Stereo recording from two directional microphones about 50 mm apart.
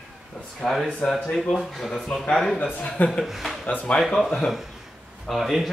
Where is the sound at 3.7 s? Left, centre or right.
Left.